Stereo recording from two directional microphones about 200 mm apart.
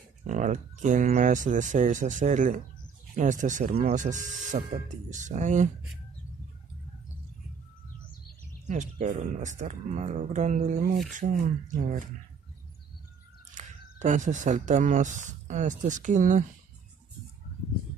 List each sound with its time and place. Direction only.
0.3 s speech: 40° right (ahead or behind)
8.6 s speech: 35° right (ahead or behind)
13.6 s speech: 40° right (ahead or behind)